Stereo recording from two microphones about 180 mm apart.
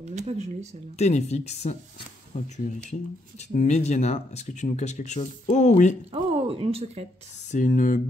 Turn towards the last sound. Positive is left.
turn(degrees=45)  # may be behind; listen again after turning